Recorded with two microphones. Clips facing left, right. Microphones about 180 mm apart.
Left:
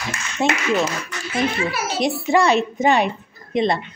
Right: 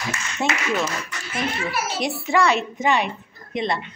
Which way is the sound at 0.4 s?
15° left (ahead or behind).